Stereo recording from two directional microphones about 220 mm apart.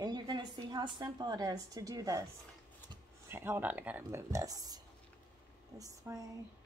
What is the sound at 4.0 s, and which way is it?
A woman's voice, 15° right (ahead or behind).